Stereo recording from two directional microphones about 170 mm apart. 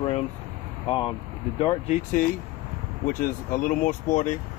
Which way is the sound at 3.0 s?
50° left (ahead or behind).